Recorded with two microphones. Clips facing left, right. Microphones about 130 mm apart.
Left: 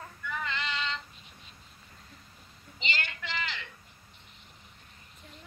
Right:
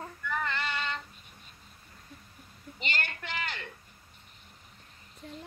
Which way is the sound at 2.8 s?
50° right (ahead or behind).